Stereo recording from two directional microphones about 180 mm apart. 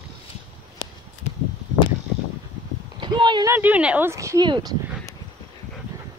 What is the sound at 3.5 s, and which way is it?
Speech, 10° right (ahead or behind).